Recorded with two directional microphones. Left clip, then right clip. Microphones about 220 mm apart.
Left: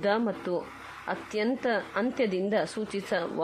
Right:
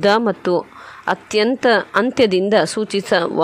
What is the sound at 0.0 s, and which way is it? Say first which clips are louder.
A man's voice: right 12 dB; 35° right (ahead or behind).